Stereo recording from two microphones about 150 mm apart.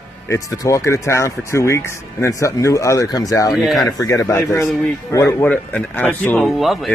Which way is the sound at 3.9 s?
20° left (ahead or behind).